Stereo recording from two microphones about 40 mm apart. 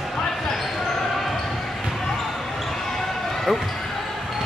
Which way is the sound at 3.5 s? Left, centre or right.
Centre.